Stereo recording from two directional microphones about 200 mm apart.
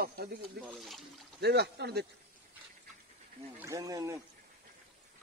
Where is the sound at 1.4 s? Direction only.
55° right (ahead or behind).